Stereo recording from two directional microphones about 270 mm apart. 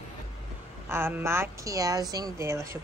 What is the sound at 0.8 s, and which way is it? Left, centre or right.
A woman's voice, centre.